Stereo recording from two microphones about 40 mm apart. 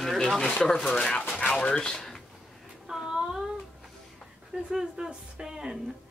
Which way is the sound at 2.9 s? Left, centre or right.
Centre.